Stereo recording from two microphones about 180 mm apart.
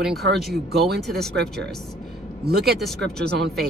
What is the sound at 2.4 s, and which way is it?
Speech, 60° right (ahead or behind).